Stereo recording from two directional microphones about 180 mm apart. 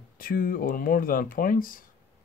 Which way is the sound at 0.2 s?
50° left (ahead or behind).